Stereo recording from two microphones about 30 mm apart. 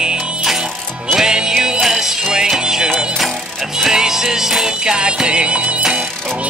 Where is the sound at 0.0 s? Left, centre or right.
Right.